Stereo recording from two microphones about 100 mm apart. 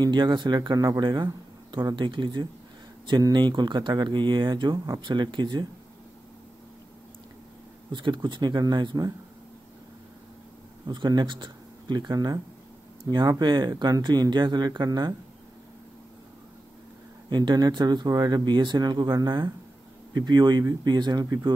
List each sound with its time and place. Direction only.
0.0 s speech: 45° right (ahead or behind)
7.9 s speech: 50° right (ahead or behind)
10.9 s speech: 50° right (ahead or behind)
17.3 s speech: 45° right (ahead or behind)